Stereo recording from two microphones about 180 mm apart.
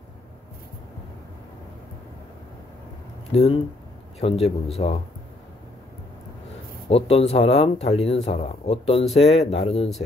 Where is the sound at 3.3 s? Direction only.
35° left (ahead or behind).